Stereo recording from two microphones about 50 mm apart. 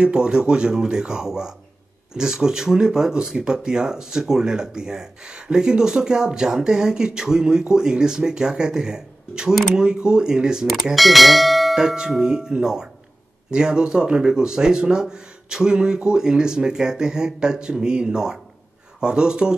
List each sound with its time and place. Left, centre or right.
0.0 s speech: centre
11.0 s speech: centre